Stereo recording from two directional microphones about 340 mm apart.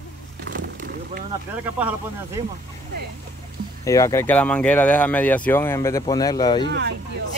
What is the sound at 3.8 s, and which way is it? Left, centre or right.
Speech, centre.